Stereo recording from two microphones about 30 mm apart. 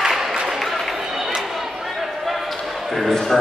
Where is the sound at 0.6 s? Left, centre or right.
Centre.